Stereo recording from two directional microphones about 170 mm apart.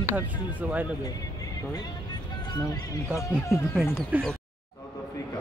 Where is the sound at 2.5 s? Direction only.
20° left (ahead or behind).